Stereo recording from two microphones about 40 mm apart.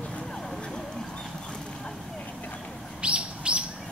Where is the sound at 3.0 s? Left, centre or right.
Right.